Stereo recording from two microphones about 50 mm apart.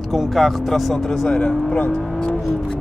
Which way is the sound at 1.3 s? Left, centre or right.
Left.